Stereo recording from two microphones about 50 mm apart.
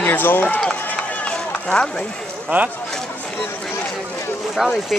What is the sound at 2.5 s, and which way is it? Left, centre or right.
Speech, right.